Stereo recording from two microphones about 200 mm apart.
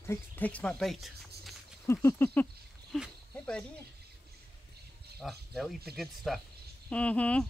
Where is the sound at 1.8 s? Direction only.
15° left (ahead or behind).